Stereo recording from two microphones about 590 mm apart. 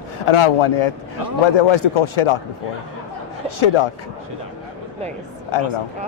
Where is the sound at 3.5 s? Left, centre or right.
Left.